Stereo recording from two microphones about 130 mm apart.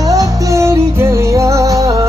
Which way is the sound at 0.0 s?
25° right (ahead or behind).